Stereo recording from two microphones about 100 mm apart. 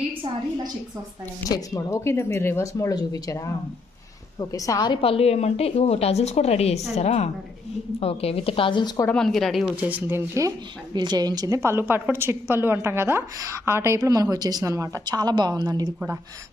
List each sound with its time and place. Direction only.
1.5 s speech: 30° left (ahead or behind)
5.0 s a woman's voice: 80° left
8.0 s speech: 80° left; by 8.9 s 55° left (ahead or behind)
9.1 s speech: 5° left (ahead or behind)
9.8 s a woman's voice: 15° right (ahead or behind)
11.0 s a woman's voice: 45° right (ahead or behind)